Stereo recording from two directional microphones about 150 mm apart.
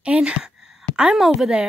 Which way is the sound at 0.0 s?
5° right (ahead or behind).